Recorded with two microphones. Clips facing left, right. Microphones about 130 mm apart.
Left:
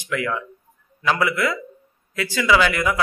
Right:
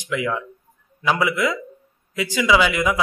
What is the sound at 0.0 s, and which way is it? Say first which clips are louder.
Speech: right 1 dB; 15° right (ahead or behind).